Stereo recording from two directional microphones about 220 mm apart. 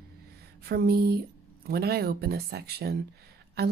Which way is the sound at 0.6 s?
45° right (ahead or behind).